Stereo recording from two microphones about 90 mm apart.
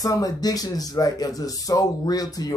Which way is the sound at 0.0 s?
45° left (ahead or behind).